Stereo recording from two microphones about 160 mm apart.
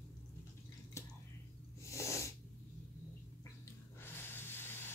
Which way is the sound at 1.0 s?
15° left (ahead or behind).